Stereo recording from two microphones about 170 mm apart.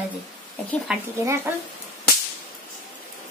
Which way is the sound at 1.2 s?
15° right (ahead or behind).